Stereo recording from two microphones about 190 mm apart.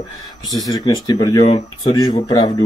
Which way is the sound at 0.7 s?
20° left (ahead or behind).